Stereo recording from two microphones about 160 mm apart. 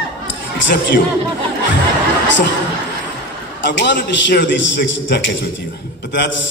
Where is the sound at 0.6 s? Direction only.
90° left.